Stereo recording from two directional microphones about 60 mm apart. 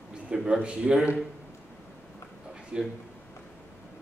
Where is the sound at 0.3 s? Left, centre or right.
Centre.